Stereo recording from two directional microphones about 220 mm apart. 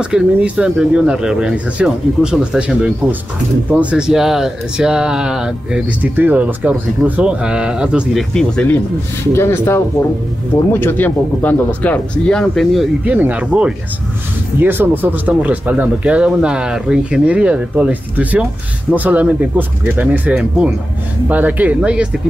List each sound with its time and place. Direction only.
0.0 s speech: 5° right (ahead or behind)